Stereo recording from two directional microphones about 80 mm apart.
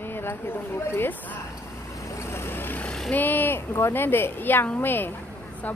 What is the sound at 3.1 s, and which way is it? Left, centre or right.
A woman's voice, left.